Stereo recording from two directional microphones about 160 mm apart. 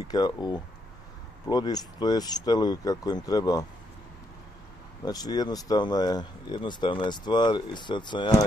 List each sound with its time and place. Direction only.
0.1 s speech: 25° left (ahead or behind)
5.0 s speech: 25° left (ahead or behind)